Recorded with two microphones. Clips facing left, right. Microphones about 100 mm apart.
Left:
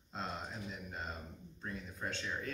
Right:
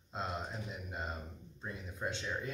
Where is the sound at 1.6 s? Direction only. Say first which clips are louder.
Right 2 dB; 15° right (ahead or behind).